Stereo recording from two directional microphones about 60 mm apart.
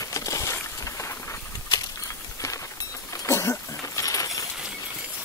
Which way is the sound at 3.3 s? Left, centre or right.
Left.